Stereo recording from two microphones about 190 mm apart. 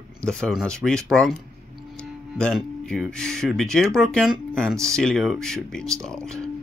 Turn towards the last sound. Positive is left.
turn(degrees=5)  # may be behind; listen again after turning